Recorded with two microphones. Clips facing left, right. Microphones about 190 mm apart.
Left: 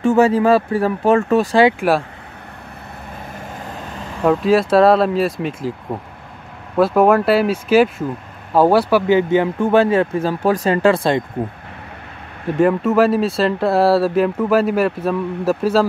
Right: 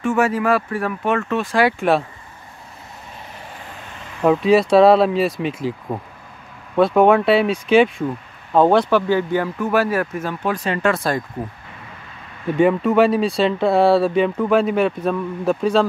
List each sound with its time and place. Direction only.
0.0 s speech: 35° left (ahead or behind)
1.6 s speech: 20° left (ahead or behind)
4.2 s speech: centre (ahead or behind)
9.0 s speech: 20° left (ahead or behind)
12.4 s speech: centre (ahead or behind)